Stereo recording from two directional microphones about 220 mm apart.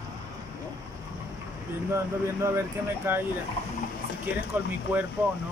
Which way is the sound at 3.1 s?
10° right (ahead or behind).